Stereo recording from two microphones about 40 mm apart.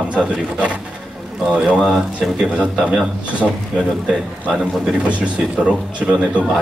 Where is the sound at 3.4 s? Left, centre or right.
Centre.